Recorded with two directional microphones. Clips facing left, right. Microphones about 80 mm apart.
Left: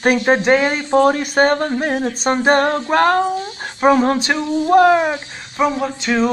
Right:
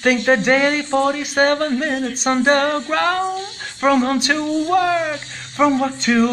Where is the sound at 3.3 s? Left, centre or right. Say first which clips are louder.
Left 3 dB; centre.